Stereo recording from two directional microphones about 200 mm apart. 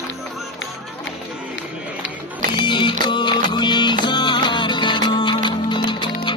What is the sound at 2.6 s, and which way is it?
Music, 25° left (ahead or behind).